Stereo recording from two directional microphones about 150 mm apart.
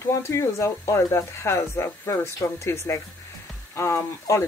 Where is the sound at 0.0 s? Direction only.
20° left (ahead or behind).